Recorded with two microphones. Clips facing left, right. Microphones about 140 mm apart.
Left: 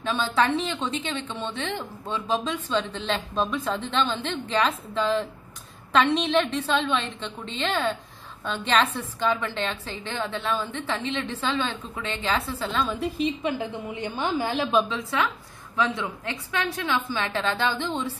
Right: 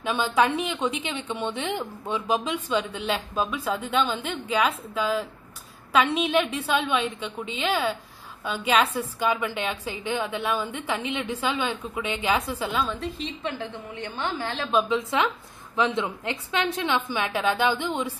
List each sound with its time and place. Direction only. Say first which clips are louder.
0.0 s speech: right 1 dB; 15° right (ahead or behind)
12.8 s a woman's voice: left 5 dB; 5° left (ahead or behind)
14.9 s speech: right 3 dB; 20° right (ahead or behind)